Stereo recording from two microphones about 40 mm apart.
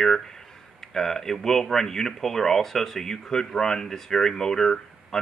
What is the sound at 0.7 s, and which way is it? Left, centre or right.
Speech, centre.